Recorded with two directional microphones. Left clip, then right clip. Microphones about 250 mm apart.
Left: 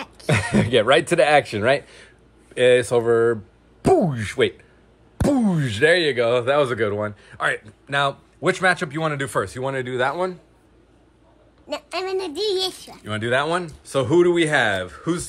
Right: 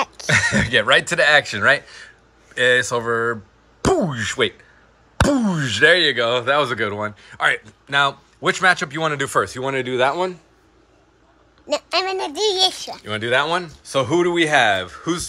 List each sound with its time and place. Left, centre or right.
0.3 s speech: centre
11.6 s a child's voice: right
13.0 s speech: centre